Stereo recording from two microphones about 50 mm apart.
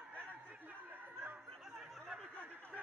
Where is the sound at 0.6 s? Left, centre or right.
Right.